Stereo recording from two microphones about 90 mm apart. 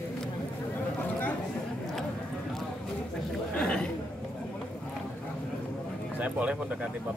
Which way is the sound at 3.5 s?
10° left (ahead or behind).